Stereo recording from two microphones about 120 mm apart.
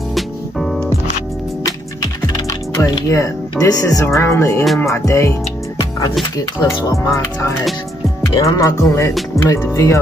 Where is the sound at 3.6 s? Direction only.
30° left (ahead or behind).